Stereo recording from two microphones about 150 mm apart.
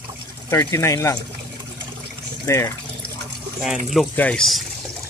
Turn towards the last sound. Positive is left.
turn(degrees=5)  # may be behind; listen again after turning